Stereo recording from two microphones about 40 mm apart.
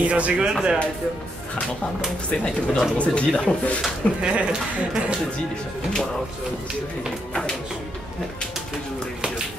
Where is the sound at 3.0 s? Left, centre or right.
Left.